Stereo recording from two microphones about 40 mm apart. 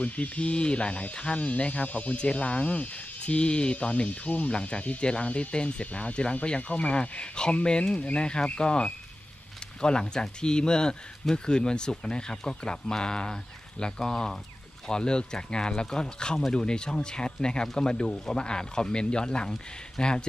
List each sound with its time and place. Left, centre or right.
0.0 s speech: left